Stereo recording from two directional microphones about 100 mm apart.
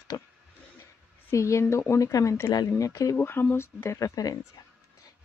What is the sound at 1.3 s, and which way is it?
Speech, 30° left (ahead or behind).